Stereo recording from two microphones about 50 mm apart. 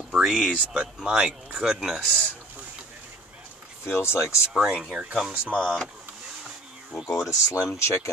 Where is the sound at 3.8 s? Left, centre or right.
Left.